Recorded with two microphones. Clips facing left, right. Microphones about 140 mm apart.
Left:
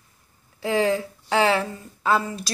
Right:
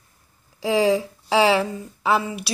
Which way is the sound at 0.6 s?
15° right (ahead or behind).